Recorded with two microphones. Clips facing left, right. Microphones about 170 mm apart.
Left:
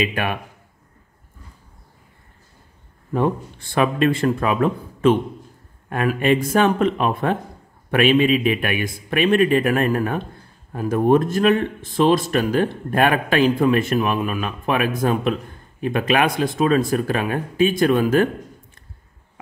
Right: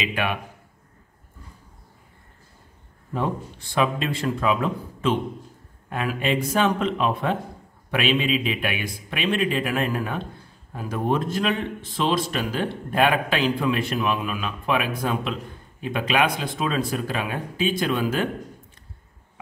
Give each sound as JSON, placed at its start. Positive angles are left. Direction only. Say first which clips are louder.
{"t": 0.0, "sound": "speech", "louder": "left 4 dB", "side_deg": 45}
{"t": 3.1, "sound": "speech", "louder": "left 6 dB", "side_deg": 55}